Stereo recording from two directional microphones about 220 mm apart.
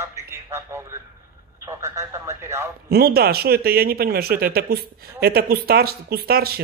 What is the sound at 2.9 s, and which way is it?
Speech, 45° right (ahead or behind).